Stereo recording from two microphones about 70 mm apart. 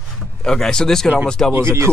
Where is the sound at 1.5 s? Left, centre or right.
Right.